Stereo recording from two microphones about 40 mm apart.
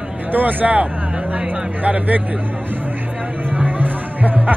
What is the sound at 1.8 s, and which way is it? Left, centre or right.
Speech, right.